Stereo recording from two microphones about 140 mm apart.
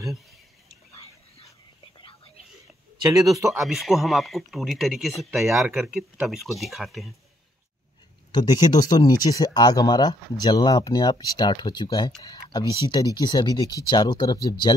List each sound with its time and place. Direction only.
2.0 s whispering: 35° left (ahead or behind)
3.0 s speech: 25° right (ahead or behind)
3.5 s speech: centre (ahead or behind)
8.3 s speech: 30° left (ahead or behind)